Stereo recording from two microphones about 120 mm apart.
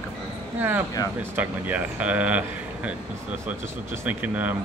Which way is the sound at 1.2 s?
15° right (ahead or behind).